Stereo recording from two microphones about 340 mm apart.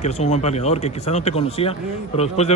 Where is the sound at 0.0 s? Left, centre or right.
Centre.